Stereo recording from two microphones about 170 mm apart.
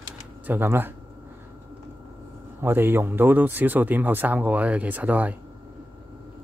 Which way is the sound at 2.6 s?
15° right (ahead or behind).